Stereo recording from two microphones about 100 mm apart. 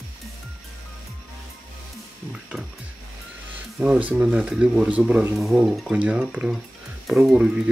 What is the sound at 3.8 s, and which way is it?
Speech, 10° right (ahead or behind).